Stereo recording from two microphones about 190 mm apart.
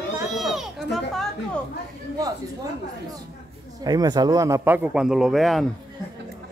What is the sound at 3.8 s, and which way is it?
Speech, 20° right (ahead or behind).